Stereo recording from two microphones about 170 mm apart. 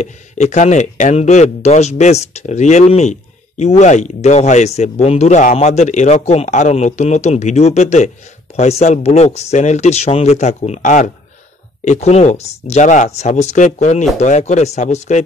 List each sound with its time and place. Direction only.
0.0 s speech: 45° left (ahead or behind)